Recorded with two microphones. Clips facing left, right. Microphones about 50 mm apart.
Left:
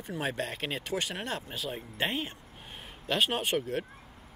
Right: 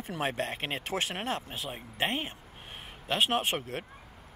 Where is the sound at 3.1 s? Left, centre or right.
Right.